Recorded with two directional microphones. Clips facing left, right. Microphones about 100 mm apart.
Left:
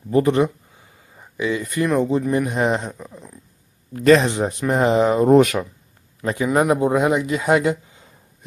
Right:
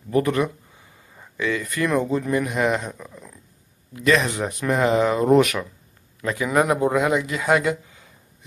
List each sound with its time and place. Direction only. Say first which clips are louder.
0.1 s speech: left 4 dB; 25° left (ahead or behind)
3.9 s speech: left 6 dB; 40° left (ahead or behind)
4.3 s speech: left 3 dB; 25° left (ahead or behind)